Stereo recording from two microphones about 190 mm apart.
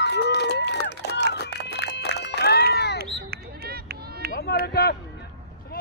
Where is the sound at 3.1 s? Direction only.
55° right (ahead or behind).